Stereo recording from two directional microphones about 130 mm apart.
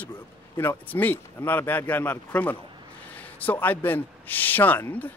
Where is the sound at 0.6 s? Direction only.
15° left (ahead or behind).